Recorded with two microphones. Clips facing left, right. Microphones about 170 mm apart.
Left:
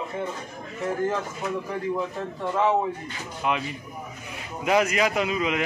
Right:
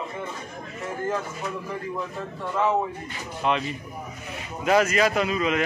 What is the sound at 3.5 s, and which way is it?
Speech, 10° left (ahead or behind).